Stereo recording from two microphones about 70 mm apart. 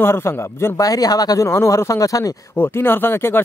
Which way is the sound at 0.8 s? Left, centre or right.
Left.